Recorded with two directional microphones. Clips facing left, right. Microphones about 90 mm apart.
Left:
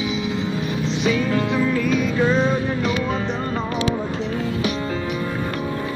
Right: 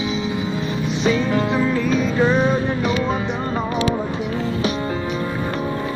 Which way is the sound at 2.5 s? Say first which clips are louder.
Right 2 dB; 25° right (ahead or behind).